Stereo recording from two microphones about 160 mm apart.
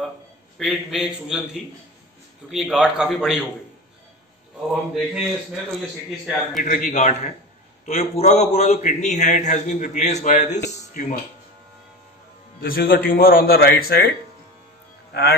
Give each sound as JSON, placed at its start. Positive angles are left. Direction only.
{"t": 0.6, "sound": "a man's voice", "side_deg": 0}
{"t": 5.1, "sound": "a man's voice", "side_deg": 0}
{"t": 6.6, "sound": "a man's voice", "side_deg": 55}
{"t": 12.5, "sound": "a man's voice", "side_deg": 65}
{"t": 15.1, "sound": "speech", "side_deg": 90}